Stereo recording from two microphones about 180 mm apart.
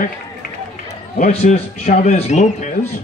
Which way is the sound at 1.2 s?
35° left (ahead or behind).